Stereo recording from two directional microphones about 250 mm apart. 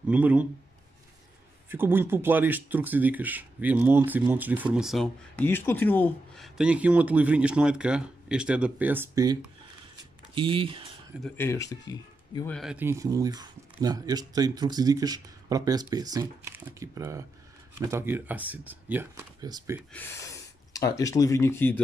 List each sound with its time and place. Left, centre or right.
0.1 s speech: centre
1.7 s speech: centre
11.2 s speech: centre
12.4 s speech: centre
19.9 s speech: centre